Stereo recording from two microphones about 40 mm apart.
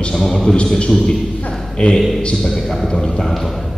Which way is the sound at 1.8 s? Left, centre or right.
Left.